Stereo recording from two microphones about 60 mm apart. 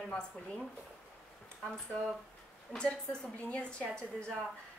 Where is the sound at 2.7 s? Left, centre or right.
Centre.